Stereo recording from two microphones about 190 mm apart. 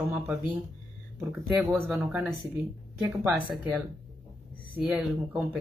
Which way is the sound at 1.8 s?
5° right (ahead or behind).